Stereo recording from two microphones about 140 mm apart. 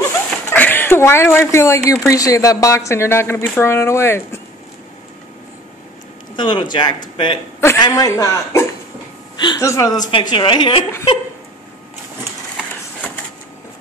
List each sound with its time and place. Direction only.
0.0 s speech: 15° left (ahead or behind)
6.3 s speech: 35° left (ahead or behind)
7.9 s a man's voice: 20° left (ahead or behind)
10.3 s speech: 35° left (ahead or behind)